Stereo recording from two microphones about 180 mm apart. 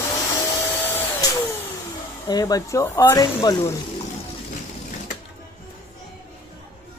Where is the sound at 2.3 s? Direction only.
20° left (ahead or behind).